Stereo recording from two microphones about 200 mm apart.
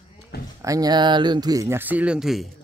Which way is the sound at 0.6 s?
15° right (ahead or behind).